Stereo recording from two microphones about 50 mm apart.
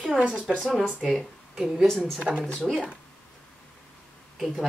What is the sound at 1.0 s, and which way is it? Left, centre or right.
Speech, centre.